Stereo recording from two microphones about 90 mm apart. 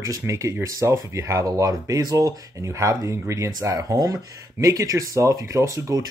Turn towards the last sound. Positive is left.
turn(degrees=-35)  # may be behind; listen again after turning